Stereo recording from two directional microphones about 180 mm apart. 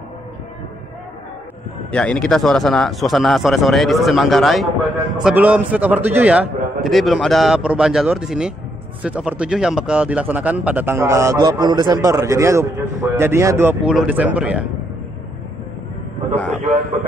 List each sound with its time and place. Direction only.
1.9 s a man's voice: 5° left (ahead or behind)